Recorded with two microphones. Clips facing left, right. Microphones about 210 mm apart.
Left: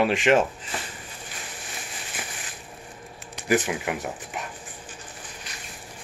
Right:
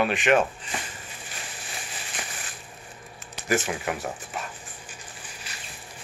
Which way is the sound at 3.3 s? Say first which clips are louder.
Left 3 dB; 15° left (ahead or behind).